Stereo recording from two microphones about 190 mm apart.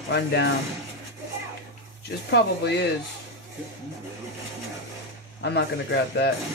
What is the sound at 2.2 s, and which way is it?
Speech, 60° left (ahead or behind).